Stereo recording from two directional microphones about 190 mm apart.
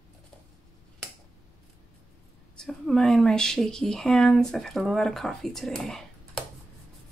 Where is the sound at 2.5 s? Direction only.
Centre (ahead or behind).